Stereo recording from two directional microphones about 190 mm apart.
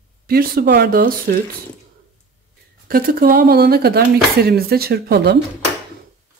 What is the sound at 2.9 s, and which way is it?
Speech, 50° right (ahead or behind).